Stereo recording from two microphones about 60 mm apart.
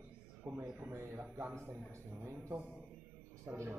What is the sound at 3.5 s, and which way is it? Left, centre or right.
Speech, right.